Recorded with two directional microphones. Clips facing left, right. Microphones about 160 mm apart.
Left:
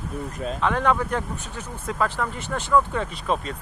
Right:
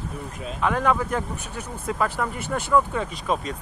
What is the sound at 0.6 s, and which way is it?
Speech, 5° right (ahead or behind).